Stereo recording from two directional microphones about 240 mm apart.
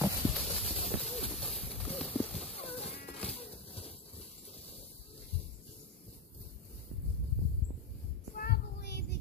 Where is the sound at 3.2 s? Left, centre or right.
Left.